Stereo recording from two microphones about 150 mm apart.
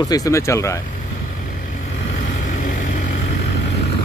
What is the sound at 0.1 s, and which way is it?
Speech, 20° left (ahead or behind).